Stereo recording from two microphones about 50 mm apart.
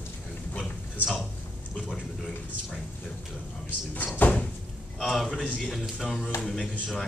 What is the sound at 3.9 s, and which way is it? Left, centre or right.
Speech, left.